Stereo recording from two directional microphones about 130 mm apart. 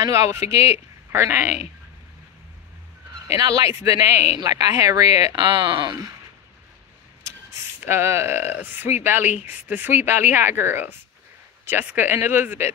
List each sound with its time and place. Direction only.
0.0 s speech: 25° right (ahead or behind)
3.3 s speech: 30° right (ahead or behind)
7.8 s speech: 20° right (ahead or behind)